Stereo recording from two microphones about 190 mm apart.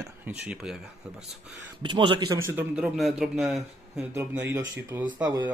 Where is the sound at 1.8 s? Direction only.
25° right (ahead or behind).